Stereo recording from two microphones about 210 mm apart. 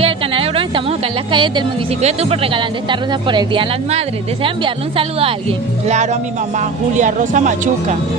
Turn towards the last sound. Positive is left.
turn(degrees=-35)  # may be behind; listen again after turning